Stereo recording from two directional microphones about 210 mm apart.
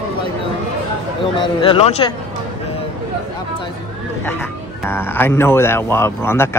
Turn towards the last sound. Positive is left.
turn(degrees=10)  # may be behind; listen again after turning